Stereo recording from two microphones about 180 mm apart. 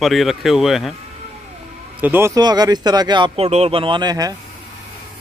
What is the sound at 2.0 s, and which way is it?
Speech, 10° right (ahead or behind).